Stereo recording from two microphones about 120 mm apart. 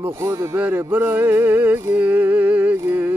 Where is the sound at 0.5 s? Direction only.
15° right (ahead or behind).